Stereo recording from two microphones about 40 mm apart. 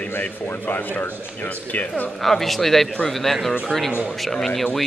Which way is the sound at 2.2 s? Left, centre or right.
Centre.